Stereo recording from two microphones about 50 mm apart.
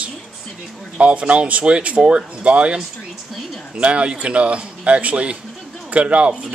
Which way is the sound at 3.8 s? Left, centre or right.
Right.